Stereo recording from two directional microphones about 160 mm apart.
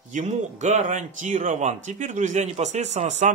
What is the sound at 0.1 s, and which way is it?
Speech, 50° right (ahead or behind).